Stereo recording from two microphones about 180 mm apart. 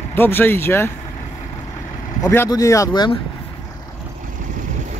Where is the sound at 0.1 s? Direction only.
10° left (ahead or behind).